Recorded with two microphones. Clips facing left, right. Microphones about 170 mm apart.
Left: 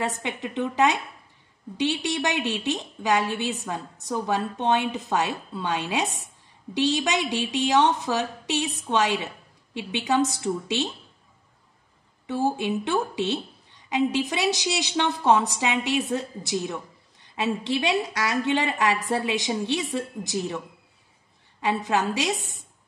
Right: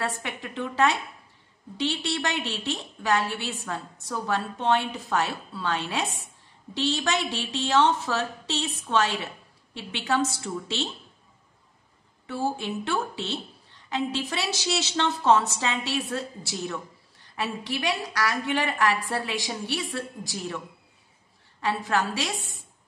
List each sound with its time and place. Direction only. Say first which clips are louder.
0.0 s a woman's voice: left 3 dB; 20° left (ahead or behind)
12.3 s a woman's voice: left 4 dB; 20° left (ahead or behind)